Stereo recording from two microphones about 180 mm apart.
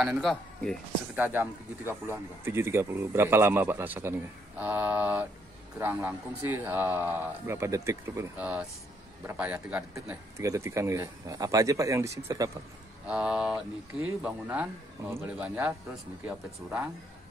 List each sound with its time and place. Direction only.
0.0 s speech: centre (ahead or behind)
1.1 s a man's voice: 10° right (ahead or behind)
13.0 s a man's voice: 5° right (ahead or behind)